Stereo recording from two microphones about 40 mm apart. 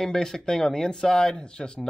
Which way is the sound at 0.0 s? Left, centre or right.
Centre.